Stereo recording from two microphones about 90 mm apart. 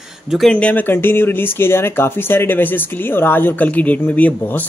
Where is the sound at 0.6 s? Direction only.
15° left (ahead or behind).